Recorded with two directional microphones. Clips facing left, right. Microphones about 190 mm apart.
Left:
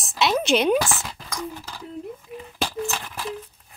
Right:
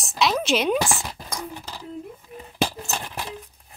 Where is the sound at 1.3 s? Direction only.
20° right (ahead or behind).